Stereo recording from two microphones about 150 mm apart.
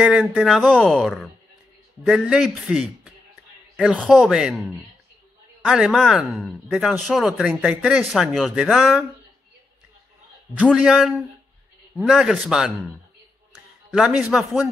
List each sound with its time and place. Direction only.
0.0 s speech: 5° right (ahead or behind)
10.6 s speech: 5° right (ahead or behind)
13.8 s speech: 5° right (ahead or behind)